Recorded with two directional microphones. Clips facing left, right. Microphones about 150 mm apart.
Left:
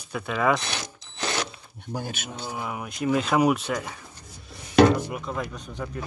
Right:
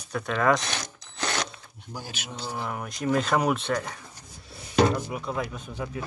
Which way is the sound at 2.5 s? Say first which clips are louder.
Even; 5° left (ahead or behind).